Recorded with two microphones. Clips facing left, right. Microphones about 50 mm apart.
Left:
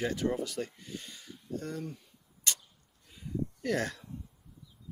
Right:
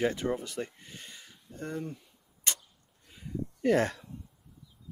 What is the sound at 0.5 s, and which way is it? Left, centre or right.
Speech, right.